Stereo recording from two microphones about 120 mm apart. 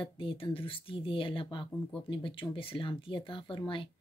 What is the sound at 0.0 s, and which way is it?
Speech, 45° left (ahead or behind).